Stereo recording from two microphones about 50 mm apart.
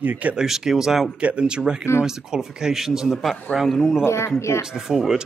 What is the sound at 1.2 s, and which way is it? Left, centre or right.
A man's voice, right.